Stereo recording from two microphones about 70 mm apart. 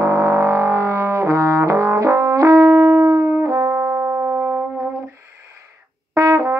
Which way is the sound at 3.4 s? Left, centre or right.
Right.